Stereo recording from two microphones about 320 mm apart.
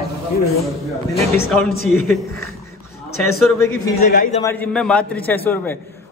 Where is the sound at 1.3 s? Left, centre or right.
Centre.